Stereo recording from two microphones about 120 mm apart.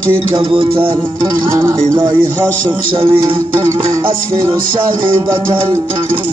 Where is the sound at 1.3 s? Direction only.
25° right (ahead or behind).